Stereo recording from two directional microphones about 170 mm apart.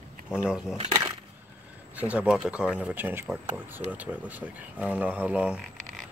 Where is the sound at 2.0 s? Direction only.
5° right (ahead or behind).